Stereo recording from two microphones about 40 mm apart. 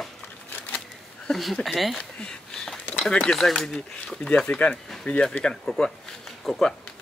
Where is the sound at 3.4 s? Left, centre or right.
Centre.